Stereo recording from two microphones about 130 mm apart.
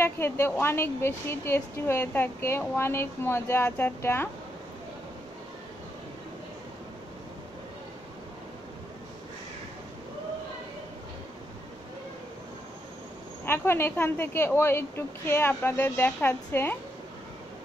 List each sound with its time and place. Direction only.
0.0 s a woman's voice: 15° left (ahead or behind)
13.5 s a woman's voice: 15° left (ahead or behind)